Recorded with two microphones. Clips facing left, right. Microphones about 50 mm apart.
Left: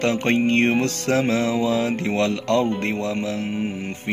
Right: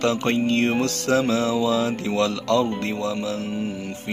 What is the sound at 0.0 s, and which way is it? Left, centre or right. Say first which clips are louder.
Music: left 1 dB; left.